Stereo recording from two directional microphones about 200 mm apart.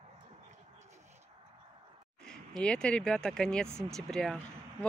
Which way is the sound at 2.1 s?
5° left (ahead or behind).